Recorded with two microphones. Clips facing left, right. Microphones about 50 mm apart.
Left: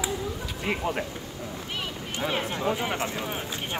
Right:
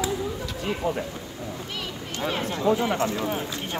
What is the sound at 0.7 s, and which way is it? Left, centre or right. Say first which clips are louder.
Speech: right 1 dB; left.